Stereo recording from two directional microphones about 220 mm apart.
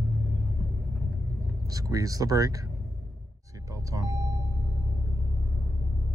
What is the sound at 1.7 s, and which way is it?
Speech, 15° right (ahead or behind).